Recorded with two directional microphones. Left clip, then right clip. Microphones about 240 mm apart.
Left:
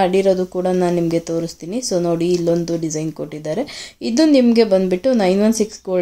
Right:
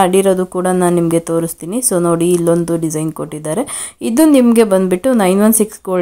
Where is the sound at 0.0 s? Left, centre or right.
Right.